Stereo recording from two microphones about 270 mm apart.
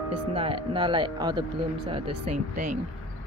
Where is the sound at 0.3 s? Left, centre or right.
Centre.